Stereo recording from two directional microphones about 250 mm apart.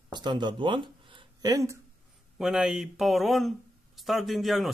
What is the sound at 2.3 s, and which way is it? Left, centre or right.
Speech, centre.